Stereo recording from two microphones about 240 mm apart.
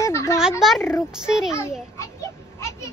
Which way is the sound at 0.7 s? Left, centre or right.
Centre.